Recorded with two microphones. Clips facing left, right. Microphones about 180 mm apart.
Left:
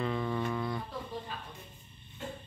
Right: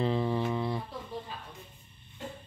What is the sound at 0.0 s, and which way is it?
Humming, 30° right (ahead or behind).